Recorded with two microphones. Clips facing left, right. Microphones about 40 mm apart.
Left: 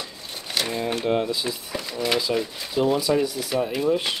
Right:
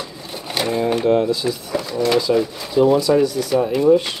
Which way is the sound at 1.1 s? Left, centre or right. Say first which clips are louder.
Right 5 dB; centre.